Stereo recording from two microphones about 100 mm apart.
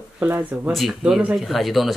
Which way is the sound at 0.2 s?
15° right (ahead or behind).